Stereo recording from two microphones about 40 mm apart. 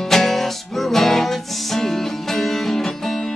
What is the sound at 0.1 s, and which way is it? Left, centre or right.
Music, centre.